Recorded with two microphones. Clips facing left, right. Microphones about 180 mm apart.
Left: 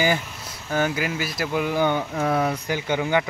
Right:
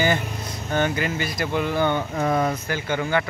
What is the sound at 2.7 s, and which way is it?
Speech, 15° left (ahead or behind).